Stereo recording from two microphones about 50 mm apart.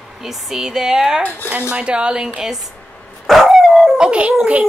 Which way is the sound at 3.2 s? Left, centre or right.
Centre.